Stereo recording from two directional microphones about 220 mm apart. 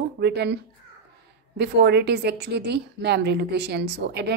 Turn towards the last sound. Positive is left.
turn(degrees=-50)  # may be behind; listen again after turning